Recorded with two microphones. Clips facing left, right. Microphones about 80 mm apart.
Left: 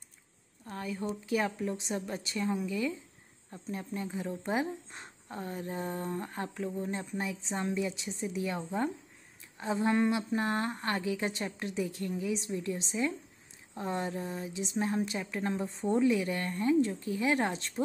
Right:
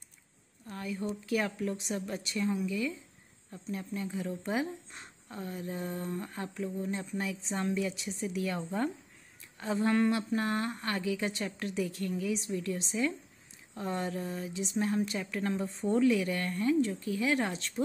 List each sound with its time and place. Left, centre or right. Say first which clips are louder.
0.7 s speech: even; left
8.6 s speech: even; centre; by 17.8 s left